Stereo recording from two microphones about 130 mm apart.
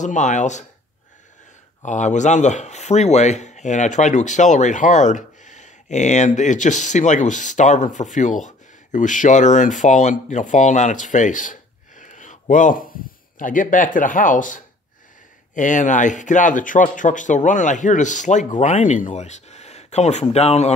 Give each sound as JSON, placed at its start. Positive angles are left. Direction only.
{"t": 0.0, "sound": "speech", "side_deg": 70}
{"t": 1.9, "sound": "speech", "side_deg": 70}
{"t": 12.0, "sound": "a sound", "side_deg": 75}
{"t": 13.4, "sound": "speech", "side_deg": 90}